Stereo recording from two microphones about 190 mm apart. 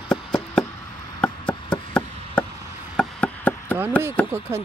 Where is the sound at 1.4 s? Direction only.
25° left (ahead or behind).